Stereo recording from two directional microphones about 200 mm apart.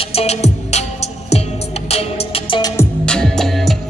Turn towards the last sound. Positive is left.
turn(degrees=0)  # may be behind; listen again after turning